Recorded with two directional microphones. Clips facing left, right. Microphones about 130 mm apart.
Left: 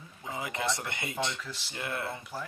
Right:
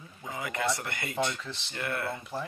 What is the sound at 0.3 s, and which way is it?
Speech, 25° left (ahead or behind).